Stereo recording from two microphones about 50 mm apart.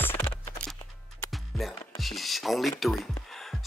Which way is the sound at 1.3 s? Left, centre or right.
Centre.